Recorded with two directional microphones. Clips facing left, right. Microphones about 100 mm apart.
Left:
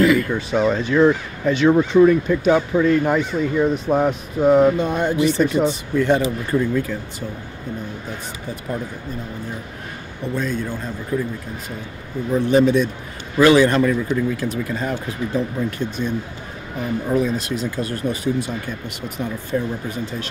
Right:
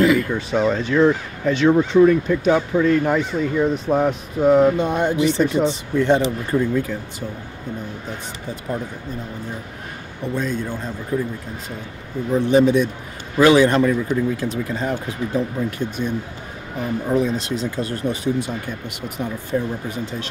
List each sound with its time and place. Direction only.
0.3 s speech: 5° left (ahead or behind)
4.7 s speech: 20° right (ahead or behind)
10.3 s speech: 20° right (ahead or behind)
11.1 s speech: 30° right (ahead or behind)
12.3 s speech: 20° right (ahead or behind)
17.1 s speech: 25° right (ahead or behind)